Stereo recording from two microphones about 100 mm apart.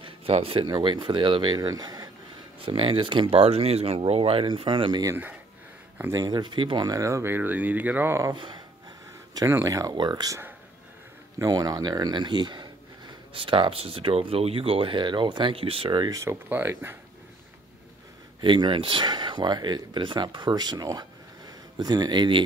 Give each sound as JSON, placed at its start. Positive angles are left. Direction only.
{"t": 0.0, "sound": "a sound", "side_deg": -70}
{"t": 0.7, "sound": "speech", "side_deg": -50}
{"t": 2.6, "sound": "speech", "side_deg": -65}
{"t": 6.1, "sound": "speech", "side_deg": -40}
{"t": 6.9, "sound": "speech", "side_deg": -30}
{"t": 8.4, "sound": "speech", "side_deg": -50}
{"t": 9.5, "sound": "speech", "side_deg": -35}
{"t": 9.9, "sound": "speech", "side_deg": -50}
{"t": 11.3, "sound": "speech", "side_deg": -40}
{"t": 16.1, "sound": "speech", "side_deg": -35}
{"t": 16.4, "sound": "speech", "side_deg": -20}
{"t": 18.4, "sound": "speech", "side_deg": -55}